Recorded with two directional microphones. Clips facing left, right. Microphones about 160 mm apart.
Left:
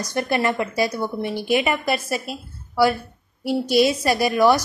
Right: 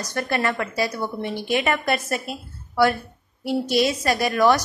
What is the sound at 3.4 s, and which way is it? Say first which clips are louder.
A woman's voice: left 3 dB; 10° left (ahead or behind).